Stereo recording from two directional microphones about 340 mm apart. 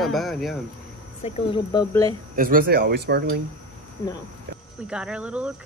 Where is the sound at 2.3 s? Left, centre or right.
Right.